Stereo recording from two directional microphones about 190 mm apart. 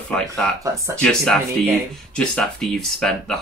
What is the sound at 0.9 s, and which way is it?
Speech, 5° left (ahead or behind).